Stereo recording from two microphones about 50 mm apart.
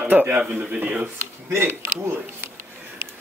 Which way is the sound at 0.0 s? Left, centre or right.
Right.